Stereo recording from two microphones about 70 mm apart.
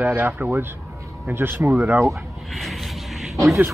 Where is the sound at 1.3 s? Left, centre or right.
Right.